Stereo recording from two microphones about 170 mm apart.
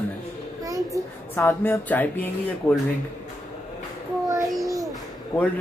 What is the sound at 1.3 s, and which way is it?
Speech, 15° left (ahead or behind).